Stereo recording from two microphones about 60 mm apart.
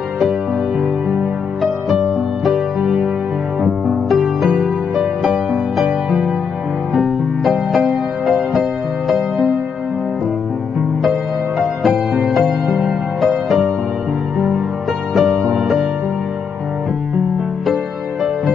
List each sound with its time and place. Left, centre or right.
1.6 s music: centre
3.6 s music: centre
7.0 s music: centre
7.8 s music: centre
8.5 s music: centre
11.1 s music: centre
15.1 s music: centre